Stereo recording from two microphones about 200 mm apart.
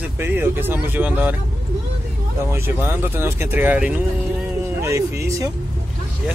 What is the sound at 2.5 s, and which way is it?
Speech, 10° right (ahead or behind).